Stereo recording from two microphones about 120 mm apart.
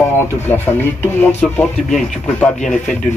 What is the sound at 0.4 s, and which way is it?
Speech, 15° left (ahead or behind).